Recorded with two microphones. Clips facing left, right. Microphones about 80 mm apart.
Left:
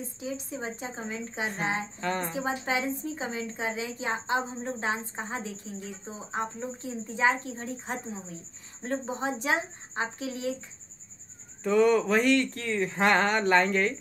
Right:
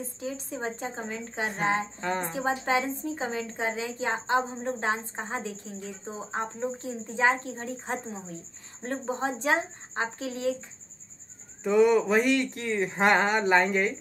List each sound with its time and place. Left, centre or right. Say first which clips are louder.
0.2 s a woman's voice: right 2 dB; right
2.0 s speech: right 1 dB; centre
2.2 s a woman's voice: right 2 dB; right
11.6 s speech: right 1 dB; centre